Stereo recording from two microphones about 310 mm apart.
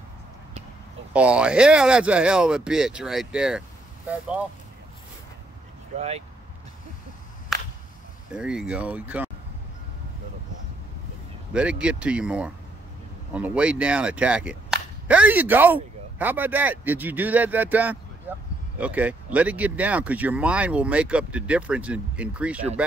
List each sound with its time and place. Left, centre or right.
1.1 s speech: centre
5.9 s speech: centre
8.3 s speech: centre
11.5 s speech: centre